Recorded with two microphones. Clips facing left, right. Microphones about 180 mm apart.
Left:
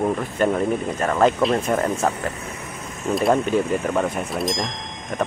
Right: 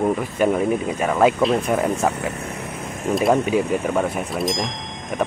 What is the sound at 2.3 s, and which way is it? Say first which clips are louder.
Vehicle: right 3 dB; 60° right (ahead or behind).